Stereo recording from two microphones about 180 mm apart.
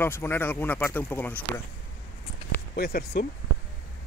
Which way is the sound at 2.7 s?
55° left (ahead or behind).